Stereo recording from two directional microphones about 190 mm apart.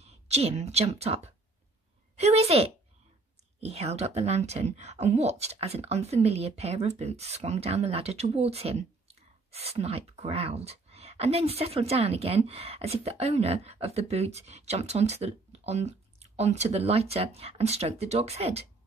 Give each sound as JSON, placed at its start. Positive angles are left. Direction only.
{"t": 0.0, "sound": "a woman's voice", "side_deg": -35}